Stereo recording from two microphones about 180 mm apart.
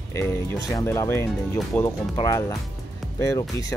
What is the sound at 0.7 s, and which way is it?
Speech, 15° left (ahead or behind).